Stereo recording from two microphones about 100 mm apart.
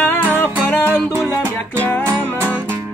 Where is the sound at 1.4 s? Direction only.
25° right (ahead or behind).